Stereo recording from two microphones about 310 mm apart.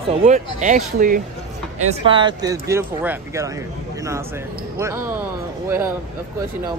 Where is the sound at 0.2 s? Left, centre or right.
Right.